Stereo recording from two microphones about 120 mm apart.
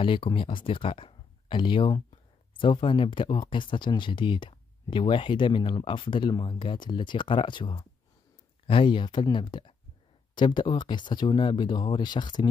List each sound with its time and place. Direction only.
0.0 s speech: 45° left (ahead or behind)